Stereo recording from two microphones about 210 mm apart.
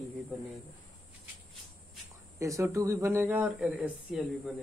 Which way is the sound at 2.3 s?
15° right (ahead or behind).